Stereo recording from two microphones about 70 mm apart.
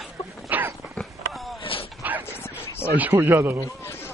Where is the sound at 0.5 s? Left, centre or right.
Right.